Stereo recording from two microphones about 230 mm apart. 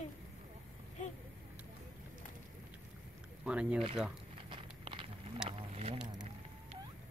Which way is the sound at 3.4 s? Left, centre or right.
Centre.